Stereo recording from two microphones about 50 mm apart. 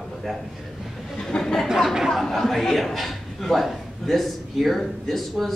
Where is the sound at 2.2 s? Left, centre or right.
Centre.